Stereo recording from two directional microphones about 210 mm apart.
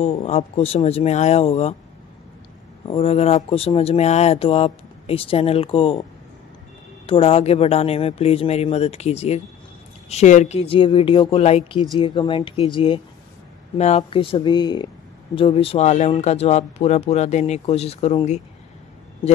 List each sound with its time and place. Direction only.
0.0 s speech: 30° left (ahead or behind)
2.8 s speech: 25° left (ahead or behind)
7.1 s speech: 25° left (ahead or behind)